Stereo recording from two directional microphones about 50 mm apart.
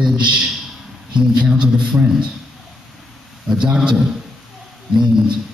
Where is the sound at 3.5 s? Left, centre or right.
Centre.